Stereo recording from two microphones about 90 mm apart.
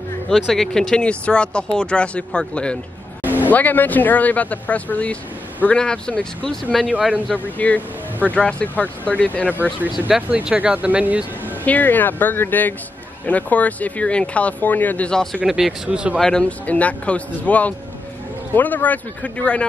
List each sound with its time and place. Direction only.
0.3 s speech: 5° left (ahead or behind)
6.9 s speech: 10° right (ahead or behind)
7.5 s speech: 20° left (ahead or behind)
10.0 s speech: 10° right (ahead or behind)
11.6 s speech: 20° left (ahead or behind)
15.4 s speech: 5° right (ahead or behind)
16.2 s speech: 10° left (ahead or behind)